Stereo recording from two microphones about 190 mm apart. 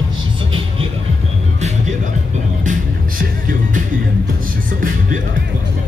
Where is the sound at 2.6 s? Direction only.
45° right (ahead or behind).